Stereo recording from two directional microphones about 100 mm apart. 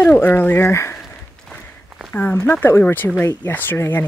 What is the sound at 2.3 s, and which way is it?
Speech, 20° left (ahead or behind).